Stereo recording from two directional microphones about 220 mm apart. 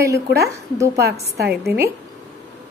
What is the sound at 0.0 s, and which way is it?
Speech, 15° right (ahead or behind).